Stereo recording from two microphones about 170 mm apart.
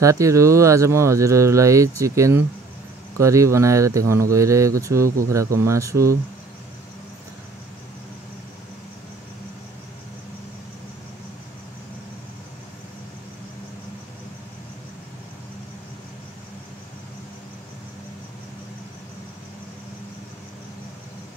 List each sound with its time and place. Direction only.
0.0 s speech: 20° right (ahead or behind)